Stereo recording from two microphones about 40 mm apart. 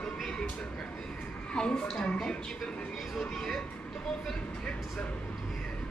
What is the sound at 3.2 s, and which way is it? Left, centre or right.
Speech, centre.